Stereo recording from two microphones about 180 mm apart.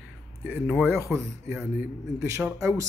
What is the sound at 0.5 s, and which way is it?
A man's voice, 5° right (ahead or behind).